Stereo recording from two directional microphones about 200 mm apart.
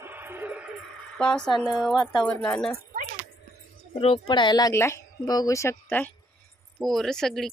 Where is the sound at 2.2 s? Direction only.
15° left (ahead or behind).